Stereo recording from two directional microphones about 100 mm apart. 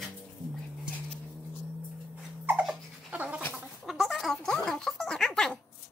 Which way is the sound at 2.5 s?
20° right (ahead or behind).